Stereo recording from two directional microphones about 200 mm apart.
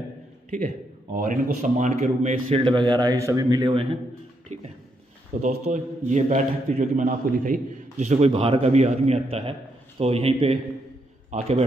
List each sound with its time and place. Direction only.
1.1 s a man's voice: 40° right (ahead or behind); by 4.0 s 25° right (ahead or behind)
5.3 s a man's voice: 40° right (ahead or behind)